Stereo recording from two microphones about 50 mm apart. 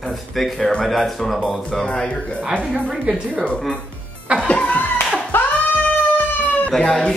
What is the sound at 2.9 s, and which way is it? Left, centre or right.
Speech, centre.